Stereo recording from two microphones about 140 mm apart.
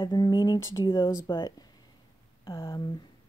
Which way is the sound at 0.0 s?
30° left (ahead or behind).